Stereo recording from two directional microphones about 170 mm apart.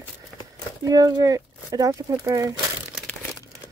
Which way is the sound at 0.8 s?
20° right (ahead or behind).